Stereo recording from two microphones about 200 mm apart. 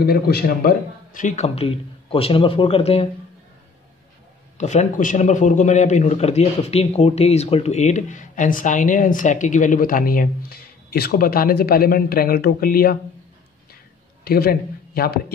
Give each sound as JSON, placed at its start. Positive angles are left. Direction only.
{"t": 0.0, "sound": "a man's voice", "side_deg": 50}
{"t": 4.6, "sound": "a man's voice", "side_deg": 35}
{"t": 14.2, "sound": "a man's voice", "side_deg": 50}